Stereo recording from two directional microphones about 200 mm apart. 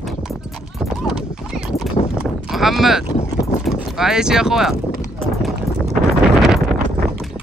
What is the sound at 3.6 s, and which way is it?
Speech, centre (ahead or behind).